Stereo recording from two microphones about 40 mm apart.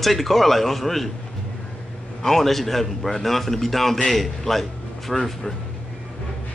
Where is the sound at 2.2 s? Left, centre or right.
Centre.